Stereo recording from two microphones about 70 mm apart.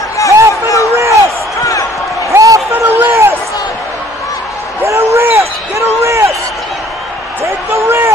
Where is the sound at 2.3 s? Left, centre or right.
Right.